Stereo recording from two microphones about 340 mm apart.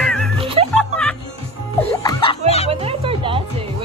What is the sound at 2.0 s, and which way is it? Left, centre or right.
Music, centre.